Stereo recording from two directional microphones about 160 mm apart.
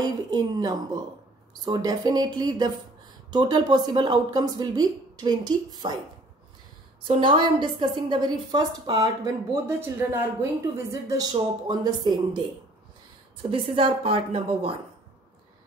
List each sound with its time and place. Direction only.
0.0 s a woman's voice: 25° right (ahead or behind)
7.1 s a woman's voice: 30° right (ahead or behind)
13.5 s a woman's voice: 35° right (ahead or behind)